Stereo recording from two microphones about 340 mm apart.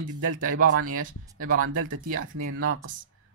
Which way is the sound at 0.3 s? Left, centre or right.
Right.